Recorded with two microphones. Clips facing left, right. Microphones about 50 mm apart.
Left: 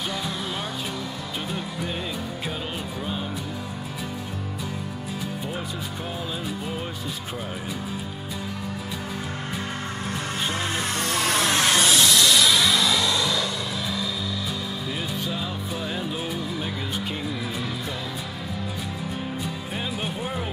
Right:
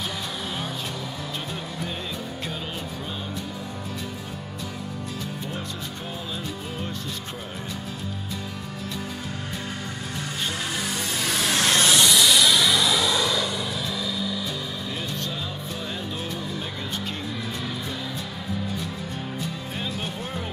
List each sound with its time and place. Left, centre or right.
0.1 s music: centre
10.5 s music: left
10.9 s music: left
11.6 s music: centre
14.9 s music: centre
17.3 s speech: centre
19.9 s speech: centre